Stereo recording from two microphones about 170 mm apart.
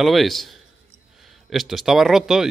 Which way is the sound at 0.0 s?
Centre (ahead or behind).